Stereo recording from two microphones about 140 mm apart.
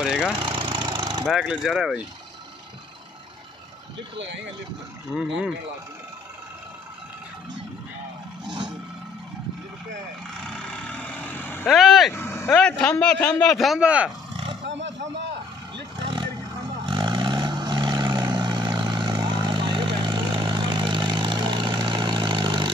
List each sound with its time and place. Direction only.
0.0 s a man's voice: 5° right (ahead or behind)
0.4 s vehicle: 35° right (ahead or behind)
1.2 s a man's voice: 5° right (ahead or behind)
5.1 s a man's voice: 5° right (ahead or behind)
8.5 s roar: 30° right (ahead or behind)
10.4 s vehicle: 5° left (ahead or behind)
11.6 s a man's voice: centre (ahead or behind)
12.1 s vehicle: 15° left (ahead or behind)
12.5 s a man's voice: 10° left (ahead or behind); by 14.1 s 10° right (ahead or behind)
16.8 s vehicle: 35° right (ahead or behind)